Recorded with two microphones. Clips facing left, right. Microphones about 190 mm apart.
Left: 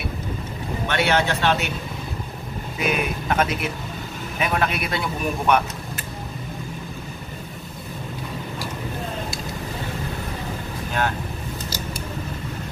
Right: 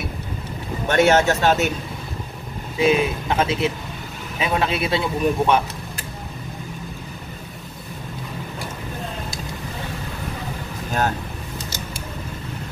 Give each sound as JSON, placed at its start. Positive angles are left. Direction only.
{"t": 0.8, "sound": "a man's voice", "side_deg": -45}
{"t": 2.8, "sound": "a man's voice", "side_deg": -25}
{"t": 10.9, "sound": "vehicle", "side_deg": -40}